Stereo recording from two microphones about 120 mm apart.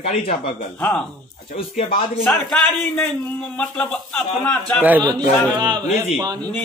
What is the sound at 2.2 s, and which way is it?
A man's voice, 5° left (ahead or behind).